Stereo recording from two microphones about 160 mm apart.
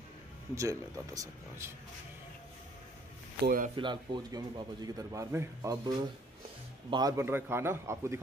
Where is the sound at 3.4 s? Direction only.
60° right (ahead or behind).